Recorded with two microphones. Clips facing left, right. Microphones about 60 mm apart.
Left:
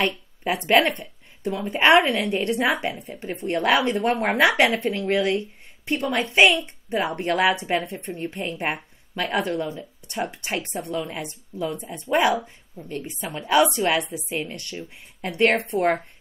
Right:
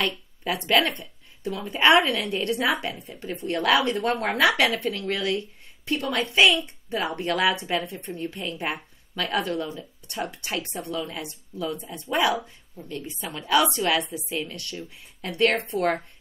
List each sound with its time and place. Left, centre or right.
0.0 s a woman's voice: left